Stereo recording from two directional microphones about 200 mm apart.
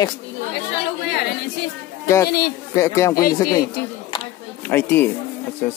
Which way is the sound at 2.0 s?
15° left (ahead or behind).